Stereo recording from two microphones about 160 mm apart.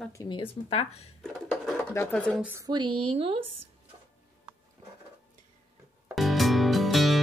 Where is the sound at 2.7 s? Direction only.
30° right (ahead or behind).